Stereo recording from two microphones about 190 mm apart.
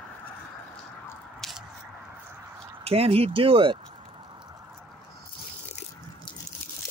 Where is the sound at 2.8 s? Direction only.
30° right (ahead or behind).